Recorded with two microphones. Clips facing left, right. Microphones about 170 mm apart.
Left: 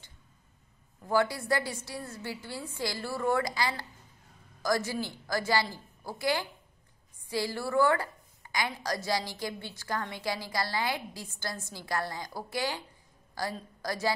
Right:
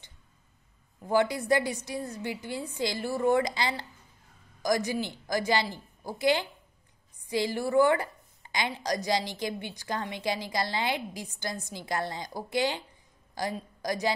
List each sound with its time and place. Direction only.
1.0 s a woman's voice: 20° right (ahead or behind)